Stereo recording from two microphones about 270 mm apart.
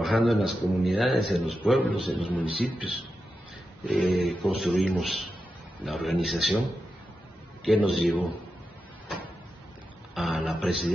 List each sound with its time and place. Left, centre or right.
0.0 s a man's voice: centre
3.9 s a man's voice: centre
7.6 s a man's voice: centre
10.1 s a sound: centre